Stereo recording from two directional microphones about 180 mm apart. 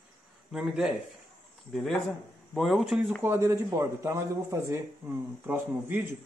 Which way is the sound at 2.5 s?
Centre (ahead or behind).